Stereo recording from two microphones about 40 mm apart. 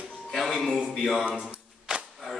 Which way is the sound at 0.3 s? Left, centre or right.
Centre.